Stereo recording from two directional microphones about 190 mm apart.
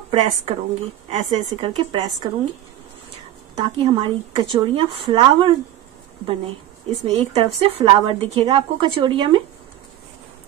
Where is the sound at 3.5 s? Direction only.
30° right (ahead or behind).